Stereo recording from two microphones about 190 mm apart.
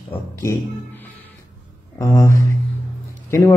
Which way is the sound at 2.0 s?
15° left (ahead or behind).